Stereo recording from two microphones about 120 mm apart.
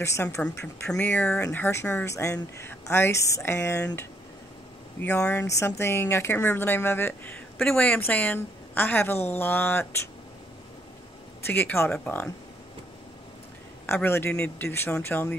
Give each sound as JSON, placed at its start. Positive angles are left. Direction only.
{"t": 0.0, "sound": "speech", "side_deg": 25}
{"t": 0.8, "sound": "speech", "side_deg": 10}
{"t": 5.0, "sound": "a woman's voice", "side_deg": 15}
{"t": 11.4, "sound": "a woman's voice", "side_deg": 20}
{"t": 13.8, "sound": "a woman's voice", "side_deg": 20}